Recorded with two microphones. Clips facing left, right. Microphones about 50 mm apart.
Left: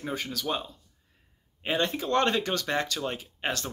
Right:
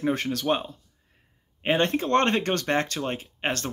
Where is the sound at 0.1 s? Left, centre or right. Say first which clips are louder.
Right 2 dB; right.